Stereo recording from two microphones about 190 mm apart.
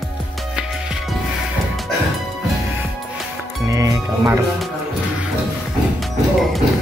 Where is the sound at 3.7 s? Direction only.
15° right (ahead or behind).